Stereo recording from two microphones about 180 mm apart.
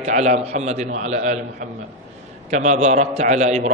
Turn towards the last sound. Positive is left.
turn(degrees=-40)  # may be behind; listen again after turning